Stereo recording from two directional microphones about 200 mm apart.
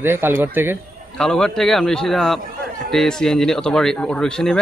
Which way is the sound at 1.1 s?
5° left (ahead or behind).